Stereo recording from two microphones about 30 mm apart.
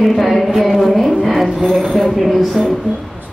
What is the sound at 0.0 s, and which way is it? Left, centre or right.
Speech, centre.